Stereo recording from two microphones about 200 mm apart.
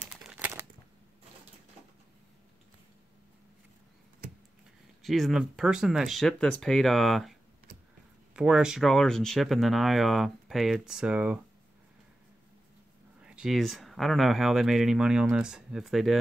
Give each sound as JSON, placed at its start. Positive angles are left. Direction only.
{"t": 0.0, "sound": "typewriter", "side_deg": -5}
{"t": 5.0, "sound": "speech", "side_deg": 0}
{"t": 8.4, "sound": "speech", "side_deg": -5}
{"t": 13.2, "sound": "speech", "side_deg": -5}